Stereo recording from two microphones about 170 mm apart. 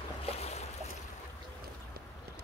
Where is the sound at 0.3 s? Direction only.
40° left (ahead or behind).